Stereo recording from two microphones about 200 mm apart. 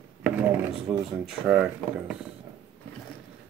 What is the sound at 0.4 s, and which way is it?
Speech, centre (ahead or behind).